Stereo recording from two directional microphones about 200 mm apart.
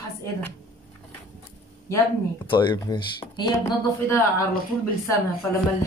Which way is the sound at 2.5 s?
20° left (ahead or behind).